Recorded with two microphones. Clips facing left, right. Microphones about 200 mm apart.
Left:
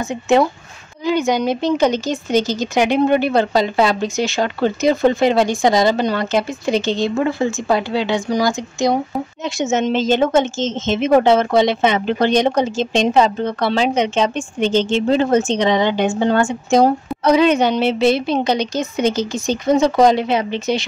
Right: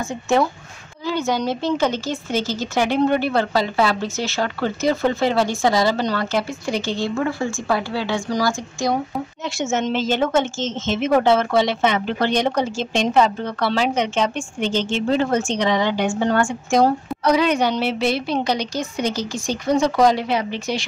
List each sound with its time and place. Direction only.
0.1 s a woman's voice: 20° left (ahead or behind)